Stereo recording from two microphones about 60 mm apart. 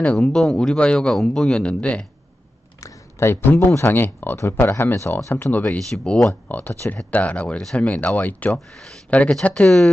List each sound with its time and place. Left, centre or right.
0.2 s speech: centre
3.2 s speech: left
5.3 s speech: left
5.9 s speech: centre
7.1 s speech: left
9.4 s speech: centre